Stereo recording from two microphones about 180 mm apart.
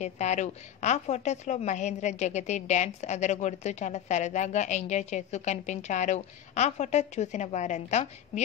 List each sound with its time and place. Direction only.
0.0 s a woman's voice: 40° left (ahead or behind)